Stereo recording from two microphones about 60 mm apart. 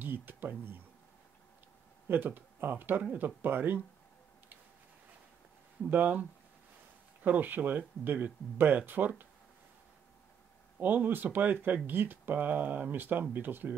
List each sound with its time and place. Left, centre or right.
0.0 s speech: right
2.0 s speech: right
5.9 s speech: right
7.2 s speech: right
10.8 s speech: right